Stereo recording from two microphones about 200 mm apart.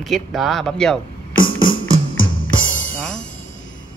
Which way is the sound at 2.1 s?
75° left (ahead or behind).